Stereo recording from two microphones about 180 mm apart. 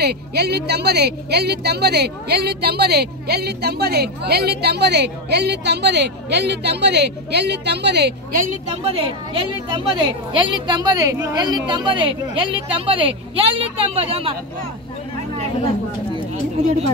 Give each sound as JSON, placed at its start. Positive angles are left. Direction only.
{"t": 0.0, "sound": "a woman's voice", "side_deg": -65}
{"t": 8.8, "sound": "a woman's voice", "side_deg": -30}